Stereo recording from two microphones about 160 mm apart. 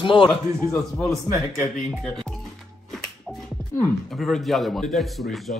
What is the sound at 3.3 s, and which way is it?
Finger snapping, centre (ahead or behind).